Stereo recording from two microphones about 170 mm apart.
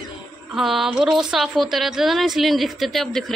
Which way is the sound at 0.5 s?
Centre (ahead or behind).